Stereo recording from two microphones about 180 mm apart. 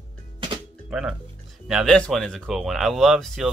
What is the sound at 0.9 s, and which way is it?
Speech, 5° right (ahead or behind).